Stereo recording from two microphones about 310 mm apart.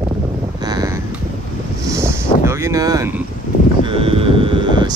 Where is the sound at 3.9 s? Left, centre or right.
Centre.